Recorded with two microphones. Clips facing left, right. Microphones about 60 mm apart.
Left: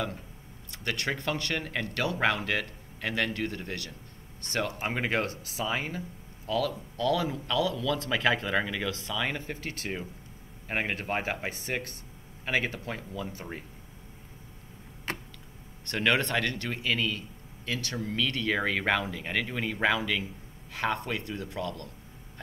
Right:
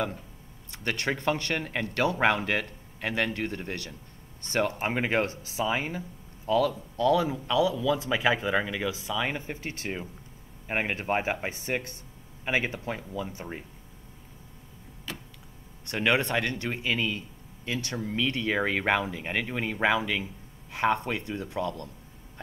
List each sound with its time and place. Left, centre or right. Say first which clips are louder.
0.7 s speech: right 2 dB; right; by 9.4 s centre
9.4 s speech: right 1 dB; right
10.7 s speech: right 3 dB; centre
15.1 s a sound: left 4 dB; left
15.8 s speech: right 1 dB; centre